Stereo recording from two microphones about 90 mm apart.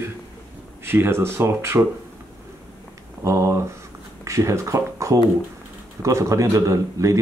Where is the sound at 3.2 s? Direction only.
35° right (ahead or behind).